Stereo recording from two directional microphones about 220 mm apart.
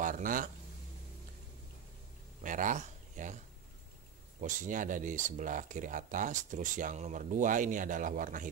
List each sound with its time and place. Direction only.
0.0 s a sound: 40° right (ahead or behind)
2.4 s speech: 35° right (ahead or behind)
4.4 s speech: 35° right (ahead or behind)